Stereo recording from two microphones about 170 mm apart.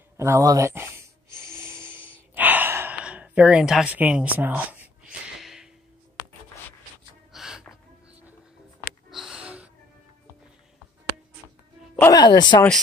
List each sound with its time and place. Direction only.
0.2 s a sound: 20° right (ahead or behind)
2.0 s gasp: 30° left (ahead or behind)
2.3 s gasp: 10° right (ahead or behind)
7.3 s music: centre (ahead or behind)
9.1 s a sound: 5° right (ahead or behind)
12.0 s speech: 20° left (ahead or behind)